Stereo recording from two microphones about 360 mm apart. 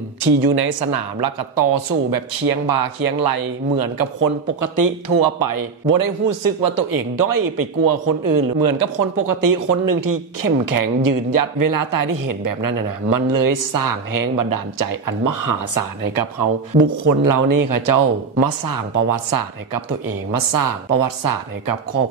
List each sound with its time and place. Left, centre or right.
0.4 s speech: right